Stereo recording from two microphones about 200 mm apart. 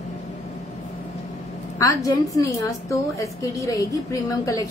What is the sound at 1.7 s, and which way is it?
A woman's voice, 15° left (ahead or behind).